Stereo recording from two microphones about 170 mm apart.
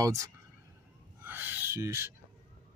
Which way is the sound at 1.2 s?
10° right (ahead or behind).